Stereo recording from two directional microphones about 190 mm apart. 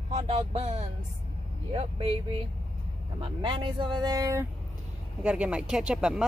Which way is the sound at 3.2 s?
25° right (ahead or behind).